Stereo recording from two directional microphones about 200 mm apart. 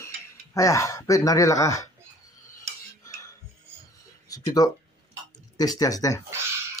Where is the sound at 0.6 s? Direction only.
15° left (ahead or behind).